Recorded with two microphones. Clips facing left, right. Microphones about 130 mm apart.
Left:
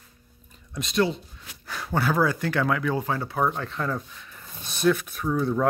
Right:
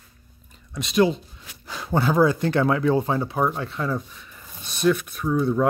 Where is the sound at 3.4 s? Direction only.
10° right (ahead or behind).